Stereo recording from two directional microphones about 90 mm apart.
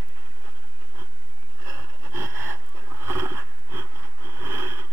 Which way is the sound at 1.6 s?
30° right (ahead or behind).